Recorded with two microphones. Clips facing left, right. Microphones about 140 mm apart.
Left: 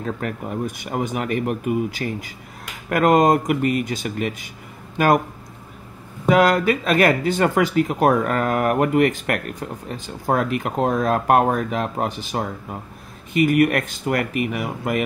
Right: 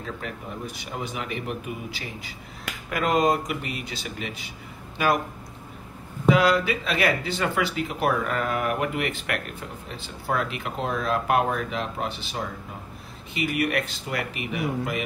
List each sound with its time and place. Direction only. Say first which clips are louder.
0.0 s speech: left 7 dB; 50° left (ahead or behind)
6.2 s speech: left 4 dB; 50° left (ahead or behind)